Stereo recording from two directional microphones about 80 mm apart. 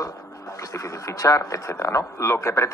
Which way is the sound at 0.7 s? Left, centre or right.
Left.